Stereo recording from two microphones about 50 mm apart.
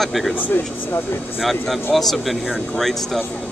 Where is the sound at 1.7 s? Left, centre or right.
Centre.